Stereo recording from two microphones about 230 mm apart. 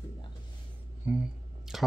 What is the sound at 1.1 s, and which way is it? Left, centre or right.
Speech, centre.